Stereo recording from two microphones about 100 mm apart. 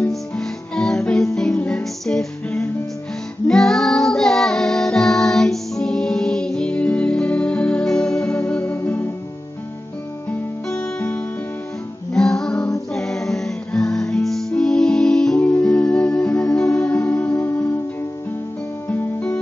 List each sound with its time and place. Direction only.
0.1 s music: 5° left (ahead or behind)
11.0 s music: 15° left (ahead or behind)
12.1 s music: 5° left (ahead or behind)